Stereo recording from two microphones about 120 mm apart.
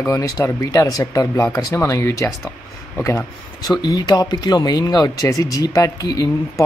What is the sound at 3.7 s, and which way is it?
Speech, 35° left (ahead or behind).